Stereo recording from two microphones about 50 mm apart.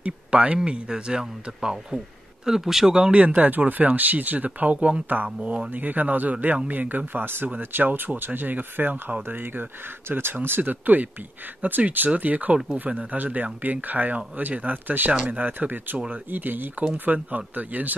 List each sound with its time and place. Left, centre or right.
0.0 s speech: right
3.1 s speech: right
5.7 s speech: right